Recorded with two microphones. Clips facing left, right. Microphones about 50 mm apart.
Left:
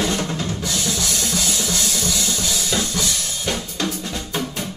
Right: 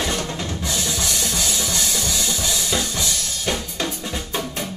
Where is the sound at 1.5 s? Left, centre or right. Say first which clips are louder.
Left 1 dB; centre.